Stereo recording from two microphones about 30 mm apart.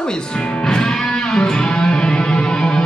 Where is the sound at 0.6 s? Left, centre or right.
Left.